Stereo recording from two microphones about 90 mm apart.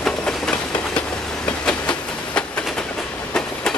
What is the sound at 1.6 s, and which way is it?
Train, 10° left (ahead or behind).